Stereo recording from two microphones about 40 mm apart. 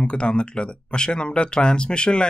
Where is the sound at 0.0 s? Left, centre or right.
Left.